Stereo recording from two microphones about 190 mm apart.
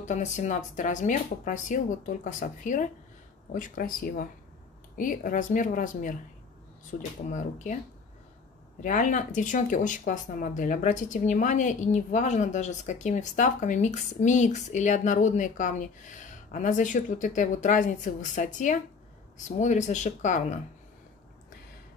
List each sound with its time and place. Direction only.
0.1 s speech: 40° left (ahead or behind)
8.8 s speech: 40° left (ahead or behind)